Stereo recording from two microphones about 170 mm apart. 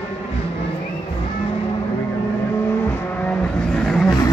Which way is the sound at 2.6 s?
10° left (ahead or behind).